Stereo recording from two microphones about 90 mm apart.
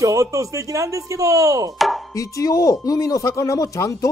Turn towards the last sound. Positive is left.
turn(degrees=35)  # may be behind; listen again after turning